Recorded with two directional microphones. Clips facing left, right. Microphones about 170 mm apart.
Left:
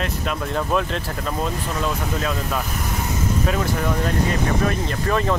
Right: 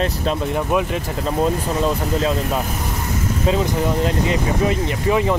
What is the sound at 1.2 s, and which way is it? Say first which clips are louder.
Speech: right 8 dB; 30° right (ahead or behind).